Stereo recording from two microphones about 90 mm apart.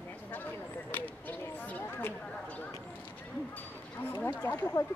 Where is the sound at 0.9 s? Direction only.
20° left (ahead or behind).